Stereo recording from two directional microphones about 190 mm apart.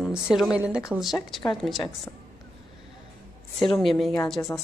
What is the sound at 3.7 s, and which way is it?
Speech, centre (ahead or behind).